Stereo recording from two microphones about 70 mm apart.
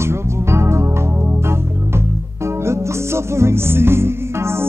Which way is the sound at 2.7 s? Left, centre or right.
Right.